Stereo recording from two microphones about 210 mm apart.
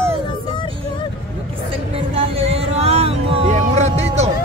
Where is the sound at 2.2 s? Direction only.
30° right (ahead or behind).